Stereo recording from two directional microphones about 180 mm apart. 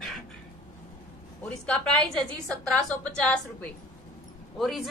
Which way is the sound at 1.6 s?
5° left (ahead or behind).